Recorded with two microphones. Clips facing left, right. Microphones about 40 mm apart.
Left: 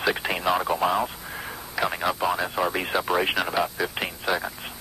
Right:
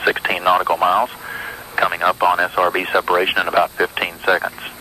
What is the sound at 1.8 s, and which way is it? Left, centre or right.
Speech, right.